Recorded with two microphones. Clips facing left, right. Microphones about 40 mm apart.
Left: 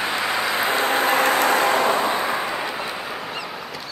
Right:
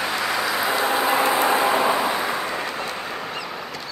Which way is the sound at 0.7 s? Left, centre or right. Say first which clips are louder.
Left 1 dB; left.